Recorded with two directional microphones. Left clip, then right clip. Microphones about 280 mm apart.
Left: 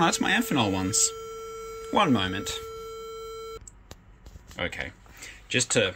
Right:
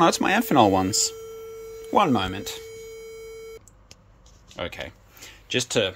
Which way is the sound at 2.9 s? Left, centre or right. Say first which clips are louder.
Left 1 dB; centre.